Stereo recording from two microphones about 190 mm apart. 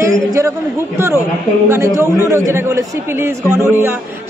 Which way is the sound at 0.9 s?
15° right (ahead or behind).